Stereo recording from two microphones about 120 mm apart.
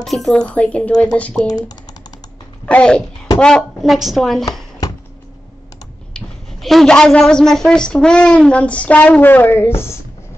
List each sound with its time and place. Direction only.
0.0 s a woman's voice: centre (ahead or behind)
2.6 s speech: 10° left (ahead or behind)
4.8 s a sound: 30° left (ahead or behind)
6.1 s a woman's voice: centre (ahead or behind); by 9.9 s 20° left (ahead or behind)